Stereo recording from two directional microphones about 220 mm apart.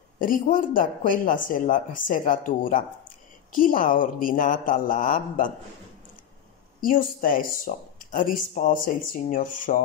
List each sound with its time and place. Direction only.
0.2 s speech: 40° left (ahead or behind)
6.8 s speech: 40° left (ahead or behind)